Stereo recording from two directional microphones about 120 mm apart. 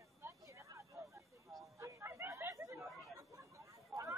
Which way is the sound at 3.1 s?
25° right (ahead or behind).